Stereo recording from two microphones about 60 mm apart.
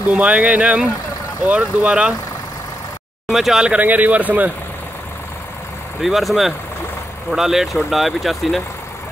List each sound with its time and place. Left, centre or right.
0.1 s speech: right
3.3 s speech: centre
3.6 s speech: right
5.9 s speech: centre